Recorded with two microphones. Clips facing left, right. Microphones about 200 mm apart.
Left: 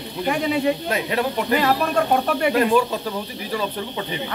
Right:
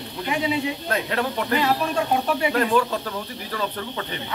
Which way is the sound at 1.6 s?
55° left (ahead or behind).